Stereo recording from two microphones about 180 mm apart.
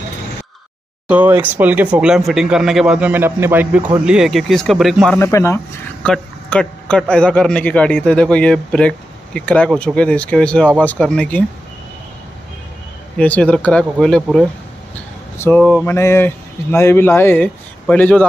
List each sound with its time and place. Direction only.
1.0 s a man's voice: 10° right (ahead or behind)
5.2 s speech: 15° left (ahead or behind)
6.0 s a man's voice: 5° left (ahead or behind)
13.2 s speech: 5° left (ahead or behind)
15.3 s speech: 15° left (ahead or behind)